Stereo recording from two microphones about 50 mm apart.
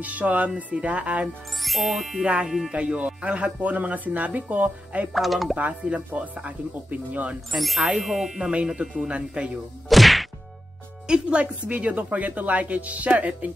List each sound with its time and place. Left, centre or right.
0.0 s speech: right
1.6 s speech: centre
2.2 s speech: right
5.1 s speech: centre
5.6 s speech: right
7.5 s speech: centre
8.4 s speech: right
9.8 s whack: centre
11.1 s speech: centre